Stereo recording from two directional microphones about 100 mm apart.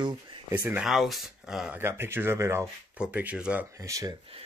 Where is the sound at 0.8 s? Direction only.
Centre (ahead or behind).